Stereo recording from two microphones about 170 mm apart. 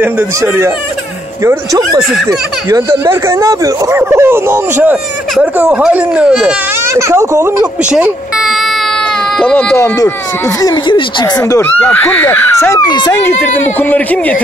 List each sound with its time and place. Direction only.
1.4 s speech: 15° right (ahead or behind)
6.9 s speech: 15° right (ahead or behind)
7.9 s speech: 5° right (ahead or behind)
9.4 s speech: 5° left (ahead or behind)
10.6 s speech: 25° left (ahead or behind)
11.6 s speech: 10° left (ahead or behind)
13.7 s speech: 10° left (ahead or behind)